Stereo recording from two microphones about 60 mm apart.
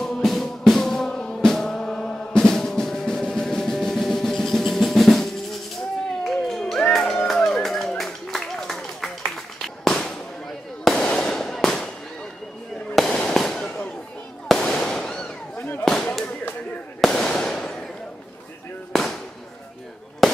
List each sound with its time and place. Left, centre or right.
0.0 s music: centre
8.0 s a sound: centre
9.8 s firecracker: centre
10.8 s fireworks: centre
12.9 s fireworks: centre
13.6 s fireworks: centre
15.8 s a sound: centre
17.0 s fireworks: centre
17.3 s fireworks: centre
20.2 s fireworks: centre